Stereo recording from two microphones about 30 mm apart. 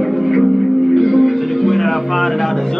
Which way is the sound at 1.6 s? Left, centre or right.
Centre.